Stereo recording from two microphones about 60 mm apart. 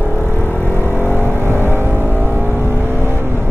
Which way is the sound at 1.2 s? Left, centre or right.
Right.